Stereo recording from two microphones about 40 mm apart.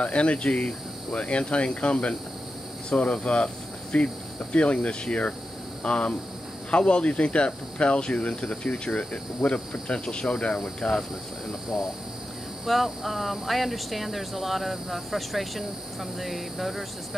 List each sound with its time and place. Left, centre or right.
0.0 s speech: left
10.5 s cricket: centre
12.6 s speech: centre